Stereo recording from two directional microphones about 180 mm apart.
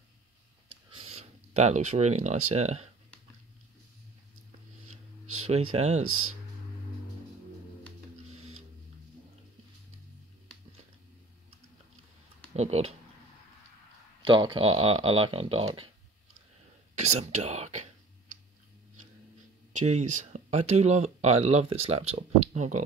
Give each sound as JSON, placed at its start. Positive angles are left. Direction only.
{"t": 0.9, "sound": "speech", "side_deg": -35}
{"t": 5.5, "sound": "speech", "side_deg": -40}
{"t": 12.5, "sound": "speech", "side_deg": -35}
{"t": 14.2, "sound": "speech", "side_deg": -25}
{"t": 16.9, "sound": "speech", "side_deg": -40}
{"t": 19.7, "sound": "speech", "side_deg": -40}